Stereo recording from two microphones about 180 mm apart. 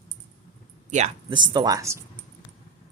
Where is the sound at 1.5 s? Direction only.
20° right (ahead or behind).